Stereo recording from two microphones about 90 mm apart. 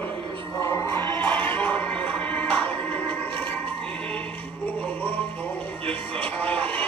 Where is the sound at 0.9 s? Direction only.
20° left (ahead or behind).